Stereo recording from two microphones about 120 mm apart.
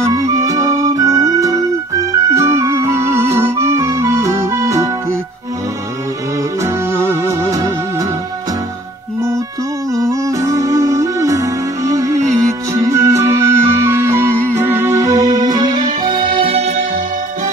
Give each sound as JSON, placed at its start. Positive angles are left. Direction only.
{"t": 0.0, "sound": "music", "side_deg": -30}
{"t": 6.6, "sound": "music", "side_deg": -20}
{"t": 9.9, "sound": "music", "side_deg": -25}
{"t": 15.2, "sound": "music", "side_deg": -35}
{"t": 16.0, "sound": "music", "side_deg": -90}
{"t": 16.4, "sound": "music", "side_deg": -65}